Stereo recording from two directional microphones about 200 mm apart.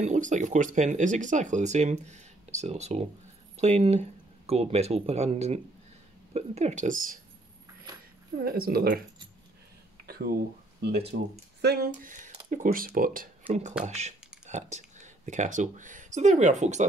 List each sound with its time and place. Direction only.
0.0 s speech: 35° right (ahead or behind)
8.5 s speech: 50° right (ahead or behind)
10.0 s a sound: 50° right (ahead or behind)
10.8 s speech: 55° right (ahead or behind); by 16.8 s 35° right (ahead or behind)